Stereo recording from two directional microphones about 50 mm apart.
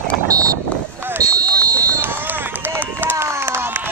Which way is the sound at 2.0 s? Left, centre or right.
Right.